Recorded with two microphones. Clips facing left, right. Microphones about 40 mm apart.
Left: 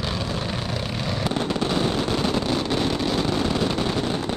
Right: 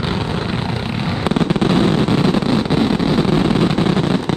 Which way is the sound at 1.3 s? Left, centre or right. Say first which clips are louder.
Right 9 dB; right.